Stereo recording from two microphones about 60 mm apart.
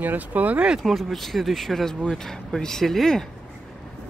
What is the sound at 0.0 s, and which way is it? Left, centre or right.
Speech, right.